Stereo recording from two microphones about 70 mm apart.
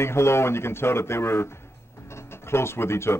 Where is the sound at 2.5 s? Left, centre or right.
Left.